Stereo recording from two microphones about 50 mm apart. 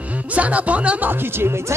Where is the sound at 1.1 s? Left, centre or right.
Right.